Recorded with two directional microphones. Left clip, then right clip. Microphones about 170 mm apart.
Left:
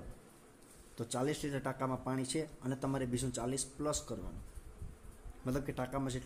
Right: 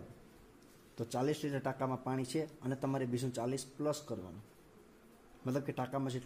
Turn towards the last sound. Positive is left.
turn(degrees=-5)  # may be behind; listen again after turning